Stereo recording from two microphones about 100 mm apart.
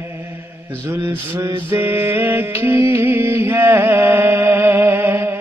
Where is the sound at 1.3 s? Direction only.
30° right (ahead or behind).